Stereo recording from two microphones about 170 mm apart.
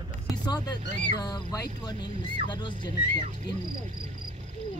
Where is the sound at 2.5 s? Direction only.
25° left (ahead or behind).